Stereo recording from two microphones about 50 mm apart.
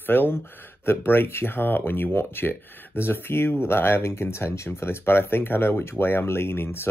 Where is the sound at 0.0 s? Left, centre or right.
Left.